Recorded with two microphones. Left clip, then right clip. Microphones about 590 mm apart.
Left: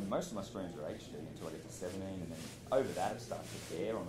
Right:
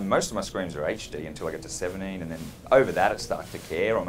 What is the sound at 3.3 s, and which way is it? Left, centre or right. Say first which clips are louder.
Speech: right 13 dB; right.